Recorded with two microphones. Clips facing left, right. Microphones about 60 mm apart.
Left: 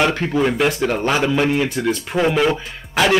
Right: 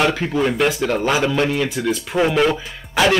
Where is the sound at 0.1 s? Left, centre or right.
Centre.